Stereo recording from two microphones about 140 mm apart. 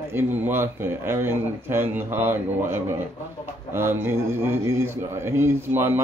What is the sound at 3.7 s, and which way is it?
A man's voice, 15° right (ahead or behind).